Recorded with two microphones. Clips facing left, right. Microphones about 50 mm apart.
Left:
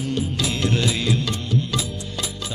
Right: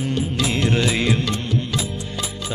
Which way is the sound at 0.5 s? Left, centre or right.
Right.